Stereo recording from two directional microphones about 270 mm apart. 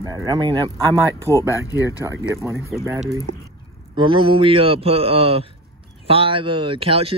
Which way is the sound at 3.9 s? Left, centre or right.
Centre.